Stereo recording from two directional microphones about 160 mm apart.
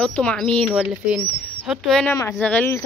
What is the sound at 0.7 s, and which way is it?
Speech, 5° right (ahead or behind).